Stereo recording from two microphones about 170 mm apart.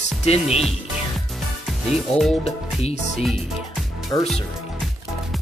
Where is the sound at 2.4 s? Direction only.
35° left (ahead or behind).